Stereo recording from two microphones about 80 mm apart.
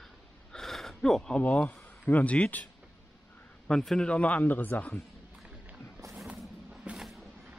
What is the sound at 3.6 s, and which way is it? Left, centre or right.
Speech, centre.